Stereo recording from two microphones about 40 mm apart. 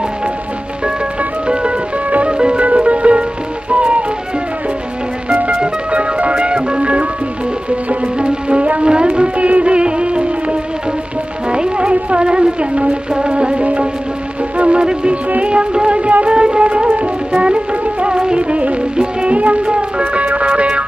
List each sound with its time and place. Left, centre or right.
2.2 s music: right
5.6 s music: right